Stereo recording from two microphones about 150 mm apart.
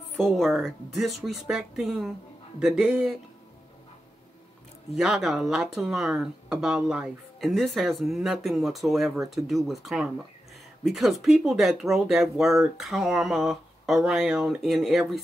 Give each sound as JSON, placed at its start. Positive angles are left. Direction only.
{"t": 0.2, "sound": "speech", "side_deg": 0}
{"t": 4.9, "sound": "speech", "side_deg": -5}